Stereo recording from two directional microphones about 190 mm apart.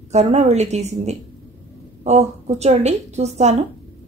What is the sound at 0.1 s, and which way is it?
Speech, 35° right (ahead or behind).